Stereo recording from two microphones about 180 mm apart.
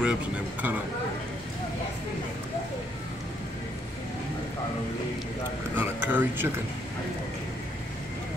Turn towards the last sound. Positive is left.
turn(degrees=-10)  # may be behind; listen again after turning